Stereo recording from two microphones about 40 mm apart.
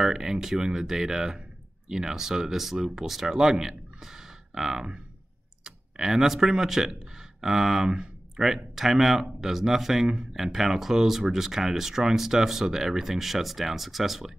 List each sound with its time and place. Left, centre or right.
0.0 s speech: centre